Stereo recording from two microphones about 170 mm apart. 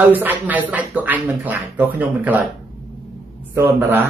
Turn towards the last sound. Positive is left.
turn(degrees=-15)  # may be behind; listen again after turning